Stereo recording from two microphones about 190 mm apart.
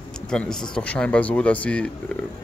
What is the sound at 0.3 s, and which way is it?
Speech, 5° left (ahead or behind).